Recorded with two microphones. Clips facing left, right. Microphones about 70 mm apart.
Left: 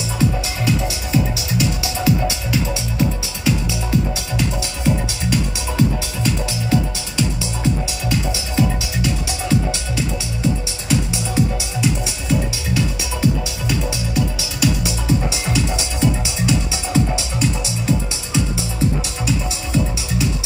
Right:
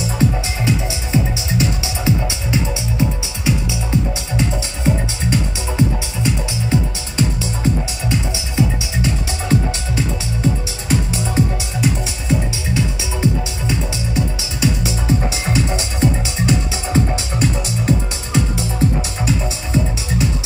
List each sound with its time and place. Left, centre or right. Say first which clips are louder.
0.7 s music: even; right
7.2 s music: right 2 dB; right
8.3 s music: even; right
9.5 s music: right 2 dB; right